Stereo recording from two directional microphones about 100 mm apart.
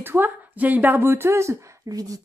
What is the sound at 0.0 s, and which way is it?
A woman's voice, 20° right (ahead or behind).